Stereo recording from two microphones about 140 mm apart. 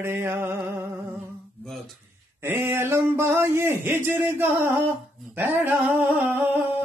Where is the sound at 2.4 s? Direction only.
15° right (ahead or behind).